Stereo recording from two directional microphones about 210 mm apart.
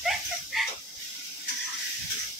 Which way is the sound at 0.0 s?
Centre (ahead or behind).